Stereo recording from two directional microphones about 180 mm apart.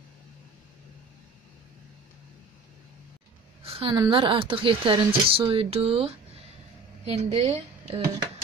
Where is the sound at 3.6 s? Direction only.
30° right (ahead or behind).